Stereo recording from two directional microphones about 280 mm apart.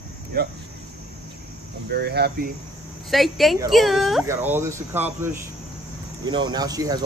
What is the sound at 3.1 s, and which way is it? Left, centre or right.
Speech, centre.